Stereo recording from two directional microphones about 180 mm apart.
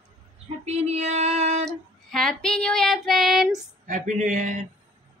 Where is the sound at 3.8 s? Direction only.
45° right (ahead or behind).